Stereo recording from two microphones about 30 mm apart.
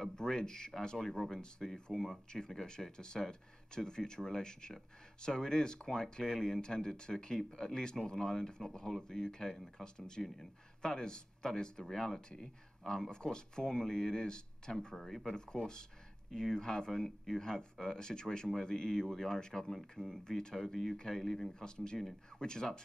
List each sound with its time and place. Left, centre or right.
0.1 s speech: left
15.0 s speech: centre
15.2 s speech: left
21.5 s speech: left